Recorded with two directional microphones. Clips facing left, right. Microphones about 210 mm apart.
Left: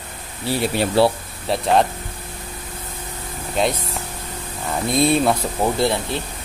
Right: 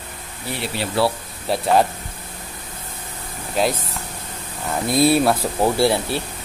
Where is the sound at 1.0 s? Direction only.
30° left (ahead or behind).